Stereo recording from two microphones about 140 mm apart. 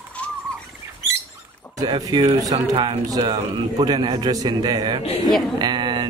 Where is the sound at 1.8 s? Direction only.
25° right (ahead or behind).